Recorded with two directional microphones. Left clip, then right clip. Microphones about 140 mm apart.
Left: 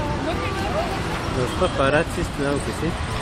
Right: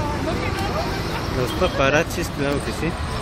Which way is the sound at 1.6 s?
Centre (ahead or behind).